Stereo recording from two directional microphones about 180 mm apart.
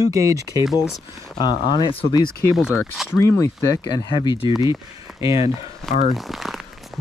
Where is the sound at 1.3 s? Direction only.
25° left (ahead or behind).